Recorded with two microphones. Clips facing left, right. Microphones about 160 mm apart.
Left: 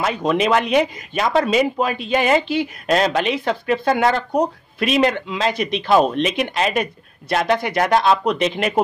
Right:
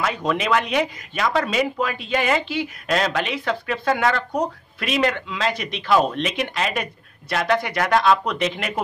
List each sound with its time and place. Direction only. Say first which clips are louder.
0.0 s speech: left 4 dB; 25° left (ahead or behind)